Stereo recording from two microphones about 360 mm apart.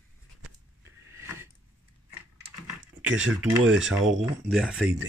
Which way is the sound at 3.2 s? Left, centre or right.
Right.